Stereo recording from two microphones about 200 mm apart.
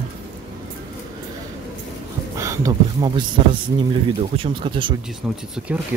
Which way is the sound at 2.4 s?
15° right (ahead or behind).